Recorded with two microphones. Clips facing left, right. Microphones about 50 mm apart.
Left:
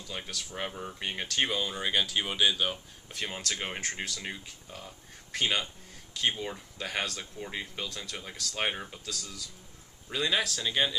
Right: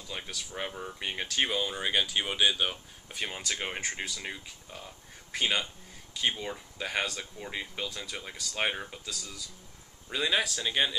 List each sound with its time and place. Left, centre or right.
0.1 s speech: centre